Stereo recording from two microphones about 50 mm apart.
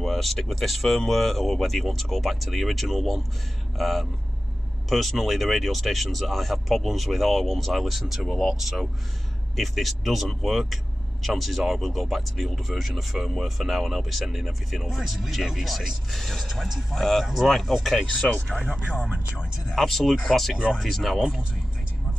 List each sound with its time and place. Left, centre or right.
0.0 s speech: centre
18.2 s speech: centre
18.9 s speech: right
19.7 s speech: centre
20.5 s speech: centre
20.8 s speech: centre
21.2 s speech: centre